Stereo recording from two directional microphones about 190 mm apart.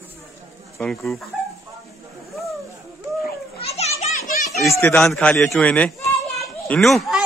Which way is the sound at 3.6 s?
35° left (ahead or behind).